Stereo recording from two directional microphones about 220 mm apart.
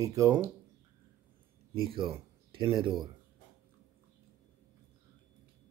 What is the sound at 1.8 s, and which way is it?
Speech, 25° right (ahead or behind).